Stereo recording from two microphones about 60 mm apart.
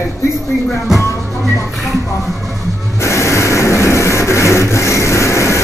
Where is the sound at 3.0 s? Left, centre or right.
Left.